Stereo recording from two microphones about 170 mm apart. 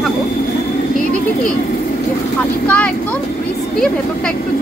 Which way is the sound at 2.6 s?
10° left (ahead or behind).